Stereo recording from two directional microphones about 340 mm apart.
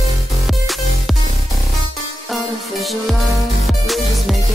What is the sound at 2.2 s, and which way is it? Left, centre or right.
Music, centre.